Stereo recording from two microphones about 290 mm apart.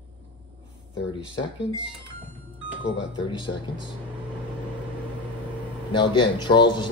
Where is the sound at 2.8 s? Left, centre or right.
Left.